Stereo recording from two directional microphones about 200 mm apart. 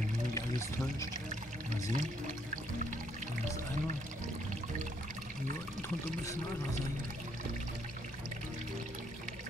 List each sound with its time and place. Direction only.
1.9 s speech: 40° right (ahead or behind)